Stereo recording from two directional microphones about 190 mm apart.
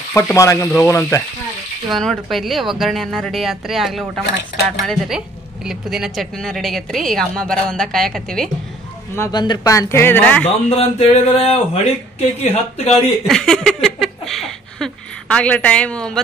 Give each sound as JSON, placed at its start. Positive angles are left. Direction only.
{"t": 0.1, "sound": "speech", "side_deg": 15}
{"t": 1.9, "sound": "a woman's voice", "side_deg": 0}
{"t": 9.1, "sound": "speech", "side_deg": 20}
{"t": 10.7, "sound": "speech", "side_deg": 30}
{"t": 13.3, "sound": "a sound", "side_deg": 5}